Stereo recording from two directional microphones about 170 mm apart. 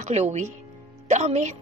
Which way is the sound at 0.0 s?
40° right (ahead or behind).